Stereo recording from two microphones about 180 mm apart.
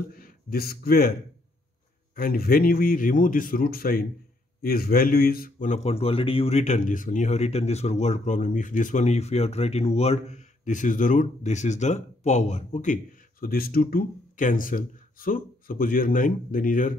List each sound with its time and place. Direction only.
0.1 s a man's voice: 55° left (ahead or behind)
2.1 s a man's voice: 55° left (ahead or behind)